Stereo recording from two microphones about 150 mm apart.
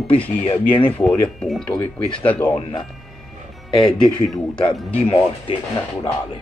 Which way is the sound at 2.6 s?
35° left (ahead or behind).